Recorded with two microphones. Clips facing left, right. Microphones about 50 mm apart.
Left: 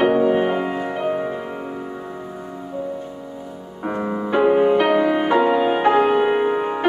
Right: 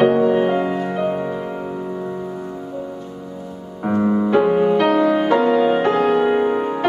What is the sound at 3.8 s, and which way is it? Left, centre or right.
Music, centre.